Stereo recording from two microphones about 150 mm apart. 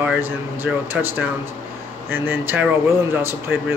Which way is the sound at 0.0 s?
10° right (ahead or behind).